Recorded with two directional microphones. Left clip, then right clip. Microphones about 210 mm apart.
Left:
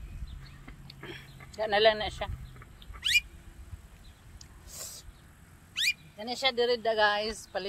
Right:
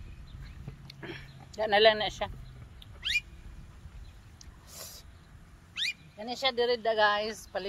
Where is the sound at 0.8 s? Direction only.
15° right (ahead or behind).